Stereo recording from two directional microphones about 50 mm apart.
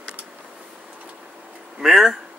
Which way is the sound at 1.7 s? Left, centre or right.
Centre.